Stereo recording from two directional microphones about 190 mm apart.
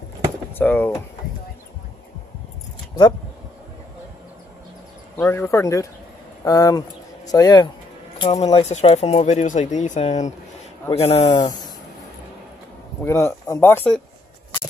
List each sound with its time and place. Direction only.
0.6 s speech: 10° left (ahead or behind)
5.1 s speech: 10° left (ahead or behind); by 11.3 s 35° left (ahead or behind)
13.0 s speech: 15° left (ahead or behind)